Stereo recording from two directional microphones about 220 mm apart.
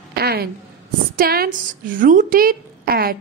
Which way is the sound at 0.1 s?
45° right (ahead or behind).